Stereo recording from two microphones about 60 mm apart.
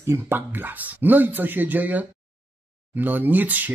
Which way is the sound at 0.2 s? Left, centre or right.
Right.